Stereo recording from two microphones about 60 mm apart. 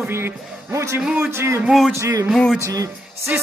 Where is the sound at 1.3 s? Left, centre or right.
Right.